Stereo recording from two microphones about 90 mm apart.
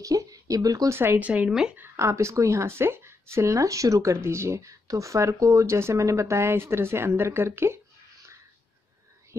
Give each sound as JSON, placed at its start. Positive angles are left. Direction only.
{"t": 0.0, "sound": "a sound", "side_deg": -40}
{"t": 0.8, "sound": "a woman's voice", "side_deg": -25}
{"t": 2.0, "sound": "speech", "side_deg": -30}